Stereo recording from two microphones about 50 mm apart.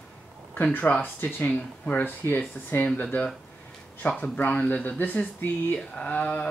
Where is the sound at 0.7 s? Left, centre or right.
Left.